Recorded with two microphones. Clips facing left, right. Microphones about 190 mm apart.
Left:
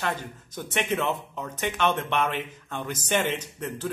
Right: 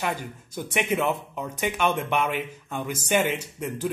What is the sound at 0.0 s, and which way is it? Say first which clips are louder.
Speech: right 1 dB; 10° right (ahead or behind).